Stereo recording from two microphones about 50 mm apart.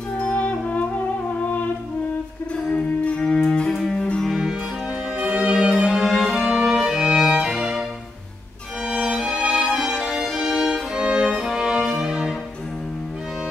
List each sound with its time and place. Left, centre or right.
0.2 s music: left
2.5 s music: left
3.4 s cello: centre
5.3 s music: centre
6.0 s music: centre
6.3 s music: centre
8.8 s music: centre